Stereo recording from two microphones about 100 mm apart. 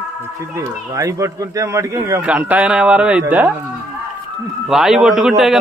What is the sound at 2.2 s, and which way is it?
A man's voice, 15° right (ahead or behind).